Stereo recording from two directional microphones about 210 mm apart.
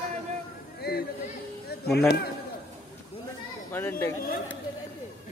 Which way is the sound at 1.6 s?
50° left (ahead or behind).